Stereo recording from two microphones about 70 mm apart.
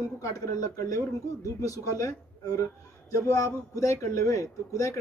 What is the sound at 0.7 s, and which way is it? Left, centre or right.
A man's voice, left.